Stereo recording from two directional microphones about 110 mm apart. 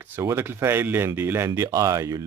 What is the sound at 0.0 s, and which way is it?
Speech, 20° right (ahead or behind).